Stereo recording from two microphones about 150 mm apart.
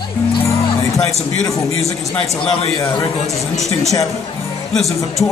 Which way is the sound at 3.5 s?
20° right (ahead or behind).